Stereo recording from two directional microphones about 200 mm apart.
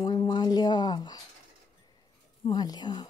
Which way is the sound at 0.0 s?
20° left (ahead or behind).